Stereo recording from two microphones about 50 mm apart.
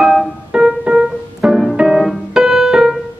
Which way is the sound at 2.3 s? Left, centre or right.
Centre.